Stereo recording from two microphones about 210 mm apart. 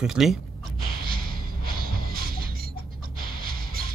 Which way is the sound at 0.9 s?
45° right (ahead or behind).